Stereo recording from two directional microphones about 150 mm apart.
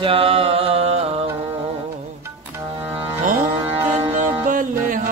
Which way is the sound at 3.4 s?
15° right (ahead or behind).